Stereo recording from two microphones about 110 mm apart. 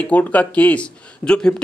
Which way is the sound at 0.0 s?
15° left (ahead or behind).